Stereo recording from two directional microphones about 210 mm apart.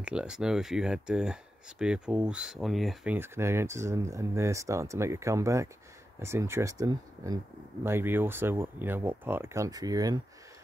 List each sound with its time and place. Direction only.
0.0 s speech: 5° right (ahead or behind)